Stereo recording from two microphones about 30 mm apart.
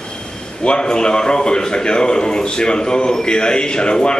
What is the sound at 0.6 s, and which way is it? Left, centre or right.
A man's voice, left.